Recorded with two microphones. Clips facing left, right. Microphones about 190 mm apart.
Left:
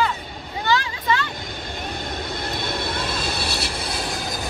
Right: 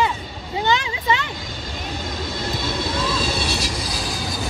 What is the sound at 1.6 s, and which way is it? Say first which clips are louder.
Vehicle: right 1 dB; 60° left (ahead or behind).